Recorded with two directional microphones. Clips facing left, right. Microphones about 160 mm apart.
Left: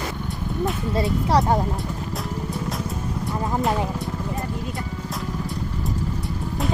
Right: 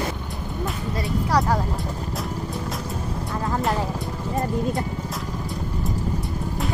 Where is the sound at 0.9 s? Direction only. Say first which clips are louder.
Left 2 dB; 25° left (ahead or behind).